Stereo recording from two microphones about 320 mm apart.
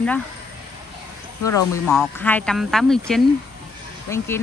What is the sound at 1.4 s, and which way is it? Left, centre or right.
Speech, centre.